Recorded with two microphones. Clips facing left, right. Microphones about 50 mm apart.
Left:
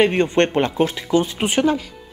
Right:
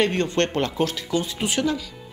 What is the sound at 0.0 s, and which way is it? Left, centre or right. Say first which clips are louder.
Speech: left 5 dB; left.